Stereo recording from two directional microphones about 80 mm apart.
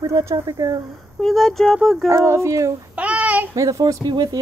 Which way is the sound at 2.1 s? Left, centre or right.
Right.